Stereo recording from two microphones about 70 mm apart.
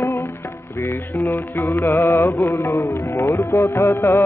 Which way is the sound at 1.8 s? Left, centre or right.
Left.